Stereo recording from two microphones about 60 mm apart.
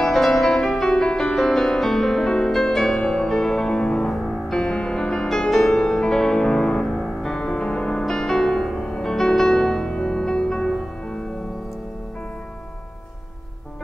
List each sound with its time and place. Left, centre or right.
0.0 s music: centre
4.1 s music: centre
4.6 s music: centre
7.3 s music: centre